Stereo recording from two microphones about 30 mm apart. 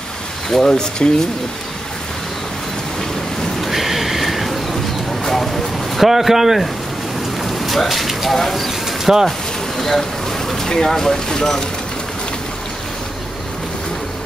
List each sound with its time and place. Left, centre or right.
0.5 s speech: centre
3.6 s train: centre
5.2 s a sound: centre
5.9 s speech: centre
7.6 s speech: centre
8.8 s bird: centre
9.8 s a sound: centre
10.7 s speech: centre